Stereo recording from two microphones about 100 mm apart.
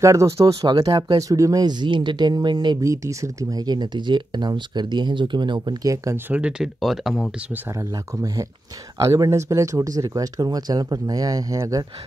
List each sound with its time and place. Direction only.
0.0 s speech: 30° right (ahead or behind)
0.7 s speech: 45° right (ahead or behind)
2.8 s speech: 30° right (ahead or behind); by 5.8 s 50° right (ahead or behind)
5.9 s speech: 25° right (ahead or behind)
6.3 s speech: 5° right (ahead or behind)
8.9 s speech: 35° right (ahead or behind)